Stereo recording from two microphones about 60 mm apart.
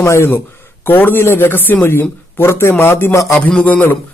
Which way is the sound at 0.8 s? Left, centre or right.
Left.